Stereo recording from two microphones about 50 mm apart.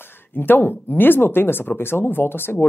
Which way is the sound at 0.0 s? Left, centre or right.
Left.